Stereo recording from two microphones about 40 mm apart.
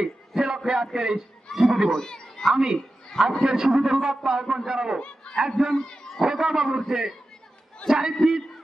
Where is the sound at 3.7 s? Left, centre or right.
Centre.